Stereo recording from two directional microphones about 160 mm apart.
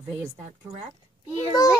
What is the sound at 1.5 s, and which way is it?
Speech, 20° left (ahead or behind).